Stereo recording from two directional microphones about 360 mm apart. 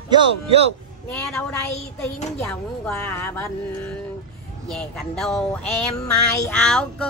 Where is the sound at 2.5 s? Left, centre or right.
Centre.